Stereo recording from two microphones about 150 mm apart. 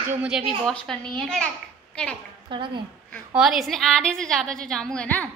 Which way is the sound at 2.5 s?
35° right (ahead or behind).